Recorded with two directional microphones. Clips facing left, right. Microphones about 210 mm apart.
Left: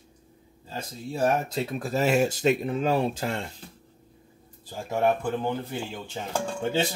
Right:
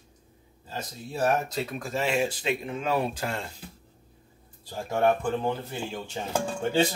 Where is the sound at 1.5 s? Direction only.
35° left (ahead or behind).